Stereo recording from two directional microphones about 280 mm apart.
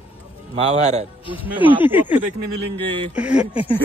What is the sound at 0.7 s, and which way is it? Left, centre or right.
Speech, right.